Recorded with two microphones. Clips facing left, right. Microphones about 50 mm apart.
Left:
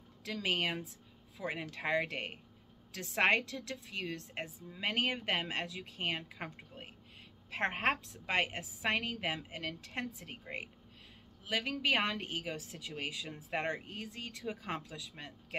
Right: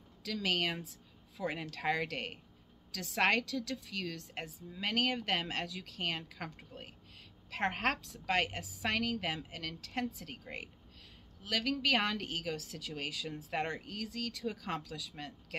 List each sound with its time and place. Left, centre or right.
0.2 s speech: left
1.3 s speech: centre